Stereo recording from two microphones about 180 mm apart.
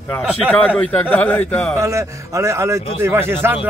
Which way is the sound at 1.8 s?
15° right (ahead or behind).